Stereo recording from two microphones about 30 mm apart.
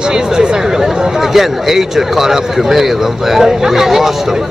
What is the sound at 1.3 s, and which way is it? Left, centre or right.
Speech, centre.